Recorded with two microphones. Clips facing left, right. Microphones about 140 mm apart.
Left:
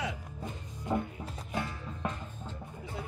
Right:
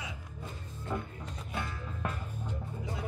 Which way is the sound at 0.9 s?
20° left (ahead or behind).